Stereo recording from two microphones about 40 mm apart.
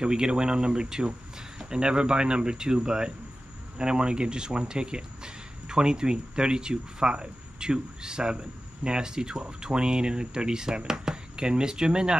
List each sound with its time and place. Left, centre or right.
0.0 s speech: right